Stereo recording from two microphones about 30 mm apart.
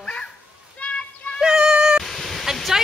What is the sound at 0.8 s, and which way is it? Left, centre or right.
Children playing, left.